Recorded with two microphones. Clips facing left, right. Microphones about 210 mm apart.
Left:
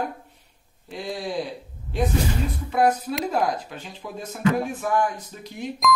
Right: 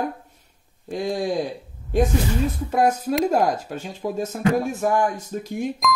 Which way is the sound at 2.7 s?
45° right (ahead or behind).